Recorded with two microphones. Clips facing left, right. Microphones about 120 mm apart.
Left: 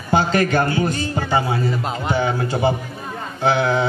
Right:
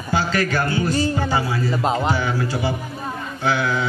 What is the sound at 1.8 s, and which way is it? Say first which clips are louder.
Speech: right 5 dB; 30° right (ahead or behind).